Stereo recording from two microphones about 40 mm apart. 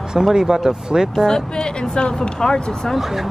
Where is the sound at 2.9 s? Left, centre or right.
Centre.